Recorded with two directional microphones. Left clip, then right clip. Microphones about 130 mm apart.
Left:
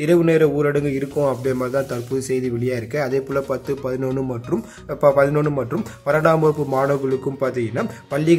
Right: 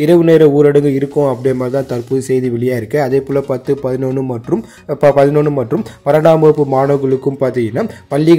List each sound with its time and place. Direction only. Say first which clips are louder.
0.0 s a man's voice: right 8 dB; 30° right (ahead or behind)